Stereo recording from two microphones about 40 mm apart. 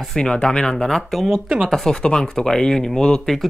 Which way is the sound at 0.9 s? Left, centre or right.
Centre.